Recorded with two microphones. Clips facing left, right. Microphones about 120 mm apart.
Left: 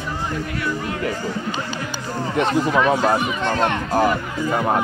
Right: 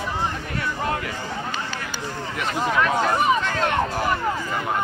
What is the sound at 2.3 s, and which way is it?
Speech, 25° left (ahead or behind).